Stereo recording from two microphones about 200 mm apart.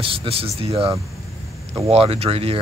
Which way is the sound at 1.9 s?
30° right (ahead or behind).